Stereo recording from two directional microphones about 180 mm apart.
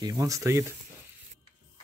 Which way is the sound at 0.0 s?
20° right (ahead or behind).